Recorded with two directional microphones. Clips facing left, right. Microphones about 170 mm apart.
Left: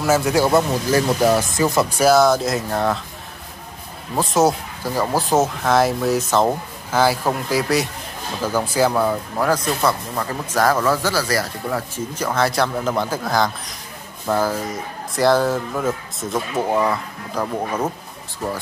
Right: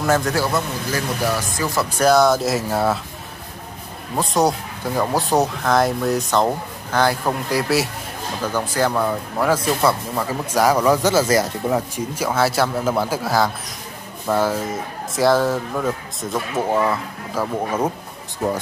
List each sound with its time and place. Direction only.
0.0 s a man's voice: 5° left (ahead or behind)
0.5 s speech: 30° left (ahead or behind)
1.9 s speech: 5° left (ahead or behind)
4.1 s a man's voice: centre (ahead or behind)